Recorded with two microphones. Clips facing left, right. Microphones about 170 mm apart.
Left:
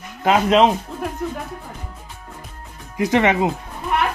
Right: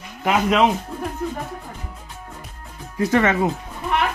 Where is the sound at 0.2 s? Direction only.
25° left (ahead or behind).